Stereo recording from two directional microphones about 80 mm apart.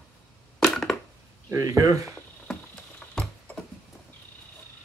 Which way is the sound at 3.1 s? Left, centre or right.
Centre.